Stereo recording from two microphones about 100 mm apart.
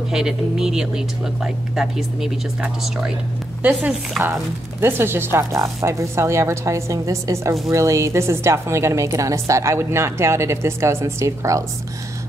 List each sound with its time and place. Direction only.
0.1 s speech: 5° right (ahead or behind)
4.2 s a woman's voice: 25° right (ahead or behind)